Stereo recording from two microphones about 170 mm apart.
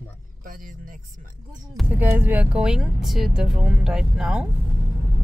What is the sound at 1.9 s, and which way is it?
Speech, 10° right (ahead or behind).